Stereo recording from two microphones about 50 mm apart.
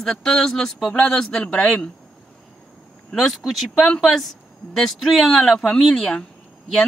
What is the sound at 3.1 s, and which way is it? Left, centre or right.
Speech, centre.